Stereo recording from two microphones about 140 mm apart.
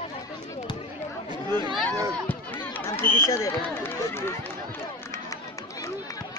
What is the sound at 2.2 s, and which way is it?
Run, 10° left (ahead or behind).